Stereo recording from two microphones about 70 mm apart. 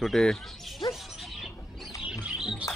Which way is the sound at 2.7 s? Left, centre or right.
Left.